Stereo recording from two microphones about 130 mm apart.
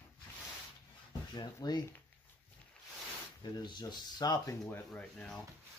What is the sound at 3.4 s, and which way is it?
Speech, 35° left (ahead or behind).